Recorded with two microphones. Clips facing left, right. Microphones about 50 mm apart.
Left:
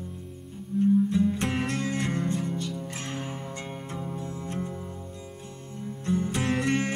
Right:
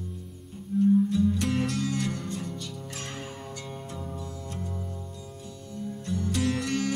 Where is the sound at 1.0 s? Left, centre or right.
Left.